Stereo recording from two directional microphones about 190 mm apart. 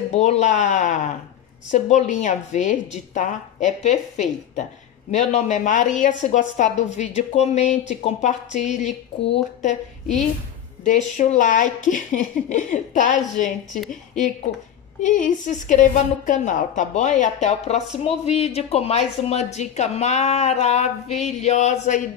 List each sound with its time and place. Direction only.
0.1 s a woman's voice: 35° left (ahead or behind)